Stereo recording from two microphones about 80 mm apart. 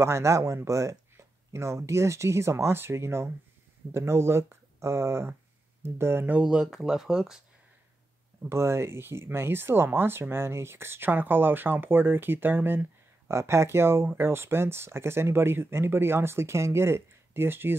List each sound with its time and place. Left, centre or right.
0.0 s speech: right
6.3 s speech: centre
8.4 s speech: right
13.3 s speech: right